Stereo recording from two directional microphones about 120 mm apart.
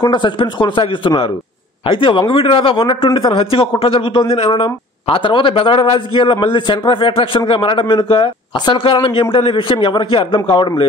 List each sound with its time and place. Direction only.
0.1 s speech: 40° left (ahead or behind)